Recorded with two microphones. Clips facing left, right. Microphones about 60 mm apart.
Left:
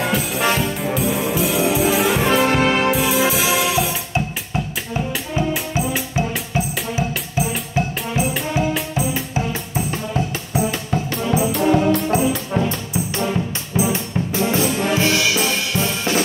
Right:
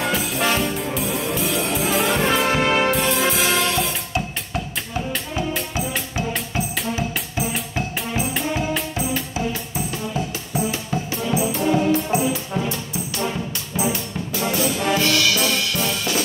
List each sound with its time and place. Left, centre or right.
0.0 s music: centre
5.1 s music: centre
11.5 s music: left
13.9 s music: left